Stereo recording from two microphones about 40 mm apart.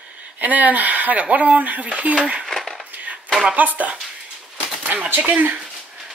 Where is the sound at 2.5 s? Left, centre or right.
Centre.